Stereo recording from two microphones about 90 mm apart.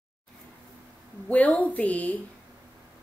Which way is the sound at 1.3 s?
15° left (ahead or behind).